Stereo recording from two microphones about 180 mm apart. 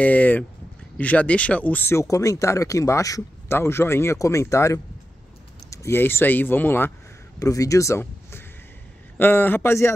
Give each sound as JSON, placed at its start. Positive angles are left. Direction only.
{"t": 0.0, "sound": "speech", "side_deg": 10}